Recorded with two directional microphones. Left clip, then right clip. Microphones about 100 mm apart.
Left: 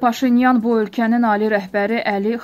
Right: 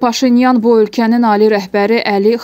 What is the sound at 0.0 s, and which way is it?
Speech, 20° right (ahead or behind).